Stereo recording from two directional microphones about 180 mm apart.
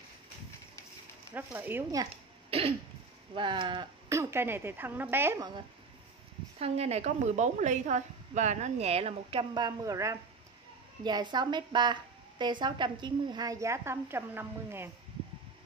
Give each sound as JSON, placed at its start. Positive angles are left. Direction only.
{"t": 1.3, "sound": "speech", "side_deg": -10}
{"t": 3.3, "sound": "speech", "side_deg": -25}
{"t": 6.6, "sound": "a woman's voice", "side_deg": -35}